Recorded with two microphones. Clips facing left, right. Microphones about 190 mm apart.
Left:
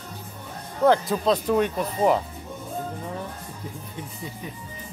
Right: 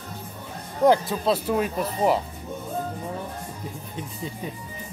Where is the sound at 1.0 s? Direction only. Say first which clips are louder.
Left 2 dB; 5° right (ahead or behind).